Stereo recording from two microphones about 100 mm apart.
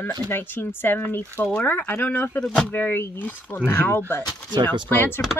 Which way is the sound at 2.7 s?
20° left (ahead or behind).